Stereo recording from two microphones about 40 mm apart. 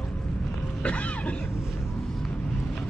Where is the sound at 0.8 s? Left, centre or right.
Left.